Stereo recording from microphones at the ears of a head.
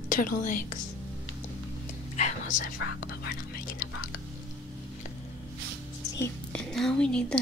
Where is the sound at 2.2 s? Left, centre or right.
Left.